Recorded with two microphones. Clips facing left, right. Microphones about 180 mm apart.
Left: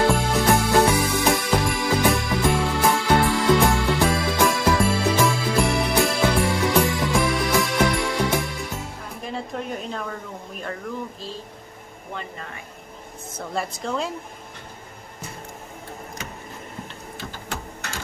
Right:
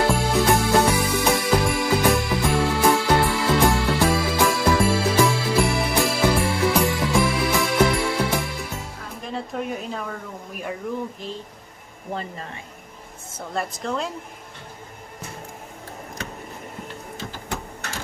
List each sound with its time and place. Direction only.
0.1 s music: centre (ahead or behind)
12.1 s a sound: 35° right (ahead or behind)
13.5 s a woman's voice: centre (ahead or behind)